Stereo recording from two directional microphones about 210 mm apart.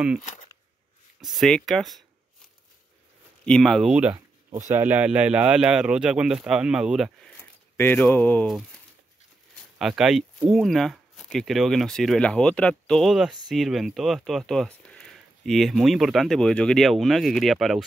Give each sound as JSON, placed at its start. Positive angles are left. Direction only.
{"t": 0.2, "sound": "speech", "side_deg": 35}
{"t": 1.3, "sound": "speech", "side_deg": 0}
{"t": 3.4, "sound": "speech", "side_deg": 5}
{"t": 7.3, "sound": "speech", "side_deg": 10}